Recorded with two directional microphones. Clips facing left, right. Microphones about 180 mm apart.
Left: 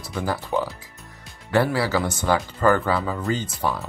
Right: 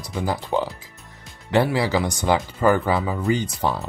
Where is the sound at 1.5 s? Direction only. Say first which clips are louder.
Right 1 dB; 15° right (ahead or behind).